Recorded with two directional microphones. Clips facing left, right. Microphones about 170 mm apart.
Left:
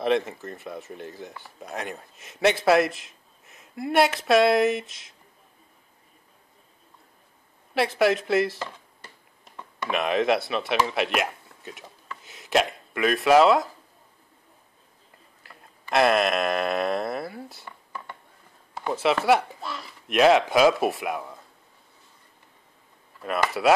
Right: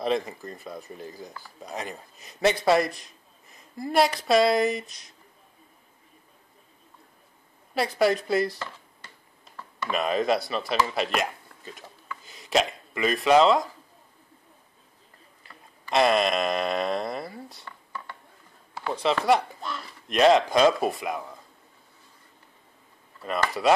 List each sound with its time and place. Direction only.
0.0 s speech: centre (ahead or behind)
7.7 s speech: centre (ahead or behind)
9.8 s speech: centre (ahead or behind)
15.4 s a sound: centre (ahead or behind)
17.6 s a sound: 20° left (ahead or behind)
18.9 s speech: 5° left (ahead or behind)
23.2 s speech: 5° left (ahead or behind)